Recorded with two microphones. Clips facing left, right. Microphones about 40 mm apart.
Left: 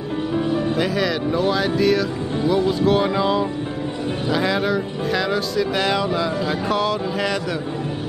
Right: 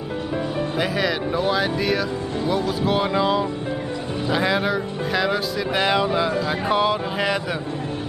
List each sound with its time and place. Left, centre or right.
0.7 s speech: centre
2.8 s music: centre
4.3 s speech: centre